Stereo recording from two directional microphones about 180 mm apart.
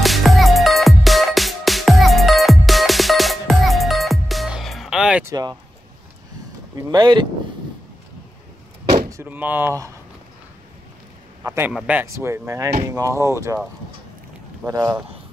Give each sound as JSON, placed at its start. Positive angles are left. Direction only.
{"t": 0.0, "sound": "music", "side_deg": 0}
{"t": 5.3, "sound": "speech", "side_deg": -20}
{"t": 6.9, "sound": "speech", "side_deg": -25}
{"t": 9.1, "sound": "speech", "side_deg": -10}
{"t": 11.4, "sound": "speech", "side_deg": -15}
{"t": 14.7, "sound": "speech", "side_deg": -20}